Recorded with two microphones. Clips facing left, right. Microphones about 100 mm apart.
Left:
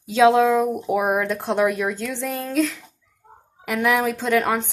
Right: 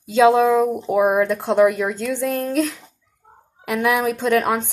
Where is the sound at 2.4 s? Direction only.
Centre (ahead or behind).